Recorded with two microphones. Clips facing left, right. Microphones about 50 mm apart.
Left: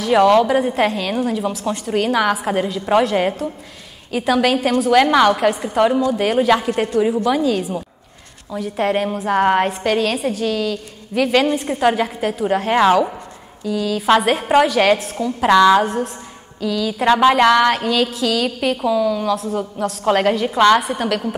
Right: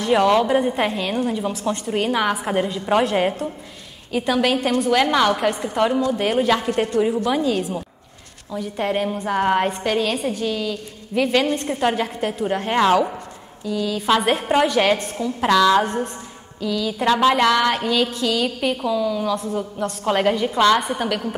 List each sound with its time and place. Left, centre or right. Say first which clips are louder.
0.0 s a woman's voice: left 4 dB; centre
7.2 s a woman's voice: left 3 dB; centre
11.2 s a woman's voice: left 4 dB; centre
15.4 s a woman's voice: left 4 dB; centre
15.8 s a woman's voice: left 2 dB; centre
17.0 s a woman's voice: left 4 dB; left
17.3 s a woman's voice: left 4 dB; centre
17.6 s a woman's voice: left 3 dB; centre
20.4 s a woman's voice: left 4 dB; centre
20.7 s a woman's voice: left 3 dB; centre